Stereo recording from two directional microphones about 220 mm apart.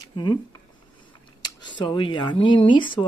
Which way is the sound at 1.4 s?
20° left (ahead or behind).